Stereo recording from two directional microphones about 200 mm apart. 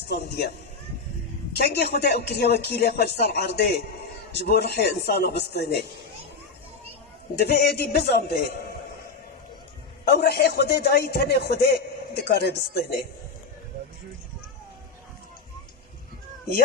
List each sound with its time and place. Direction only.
1.6 s speech: 55° left (ahead or behind)
7.3 s speech: 55° left (ahead or behind)
10.0 s speech: 55° left (ahead or behind)